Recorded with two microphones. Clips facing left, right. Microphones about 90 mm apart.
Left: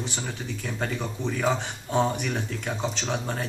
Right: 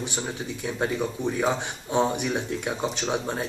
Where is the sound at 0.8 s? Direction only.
15° right (ahead or behind).